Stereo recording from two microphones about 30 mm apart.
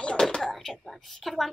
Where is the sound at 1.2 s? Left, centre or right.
Centre.